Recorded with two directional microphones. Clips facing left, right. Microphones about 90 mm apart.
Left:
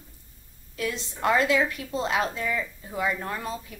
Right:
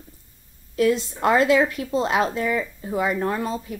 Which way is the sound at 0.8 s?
35° right (ahead or behind).